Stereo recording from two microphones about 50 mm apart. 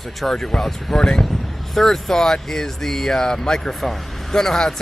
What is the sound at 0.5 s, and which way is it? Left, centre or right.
Speech, centre.